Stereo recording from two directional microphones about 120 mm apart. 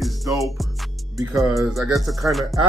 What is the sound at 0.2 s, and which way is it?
Music, 25° right (ahead or behind).